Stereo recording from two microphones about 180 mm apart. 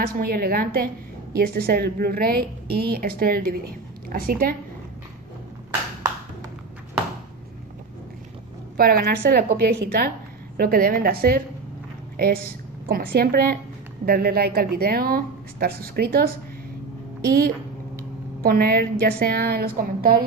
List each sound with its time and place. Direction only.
0.0 s a woman's voice: 55° right (ahead or behind)
8.7 s a woman's voice: 55° right (ahead or behind)